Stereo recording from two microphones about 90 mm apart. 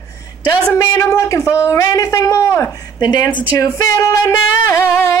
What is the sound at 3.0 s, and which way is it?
Speech, 50° left (ahead or behind).